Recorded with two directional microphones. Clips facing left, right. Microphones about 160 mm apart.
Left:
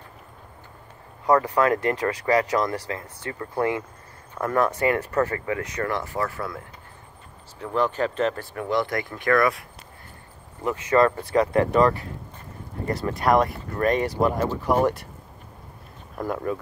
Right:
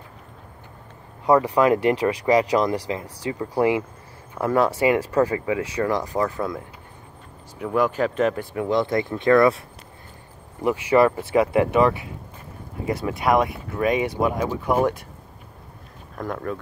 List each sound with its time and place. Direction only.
1.2 s speech: 10° right (ahead or behind)
10.6 s speech: 15° right (ahead or behind)
16.2 s speech: 5° left (ahead or behind)